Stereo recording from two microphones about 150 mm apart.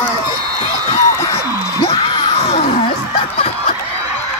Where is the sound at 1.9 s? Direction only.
45° left (ahead or behind).